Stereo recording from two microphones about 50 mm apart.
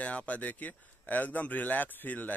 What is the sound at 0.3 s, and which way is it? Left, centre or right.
Speech, left.